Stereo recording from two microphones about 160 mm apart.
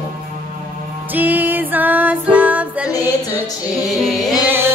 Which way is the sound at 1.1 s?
10° right (ahead or behind).